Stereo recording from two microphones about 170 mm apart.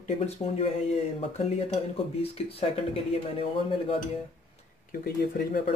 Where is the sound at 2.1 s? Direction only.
35° left (ahead or behind).